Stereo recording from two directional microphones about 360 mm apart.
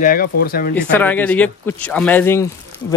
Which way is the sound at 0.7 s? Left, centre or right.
Centre.